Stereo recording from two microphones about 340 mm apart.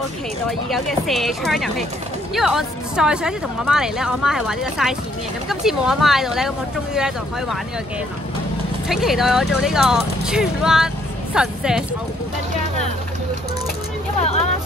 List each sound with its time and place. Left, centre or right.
0.5 s speech: centre
8.8 s speech: centre
14.2 s vehicle: centre